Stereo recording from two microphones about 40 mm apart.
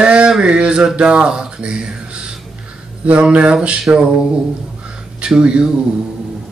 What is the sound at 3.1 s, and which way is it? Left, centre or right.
Mantra, right.